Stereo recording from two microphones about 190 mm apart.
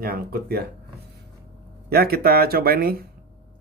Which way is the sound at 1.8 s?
55° right (ahead or behind).